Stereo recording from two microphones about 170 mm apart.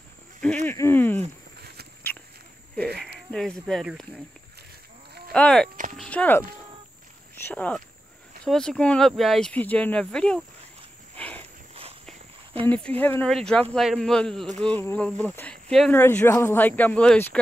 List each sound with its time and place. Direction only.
0.7 s speech: 15° left (ahead or behind)
1.6 s a sound: 70° right (ahead or behind)
2.1 s walk: 10° left (ahead or behind)
3.3 s speech: 5° left (ahead or behind)
5.3 s speech: 5° left (ahead or behind)
5.9 s a sound: 10° left (ahead or behind)
7.4 s speech: 10° left (ahead or behind)
11.1 s cricket: 10° left (ahead or behind)
12.6 s speech: 10° left (ahead or behind)
16.0 s speech: 15° left (ahead or behind)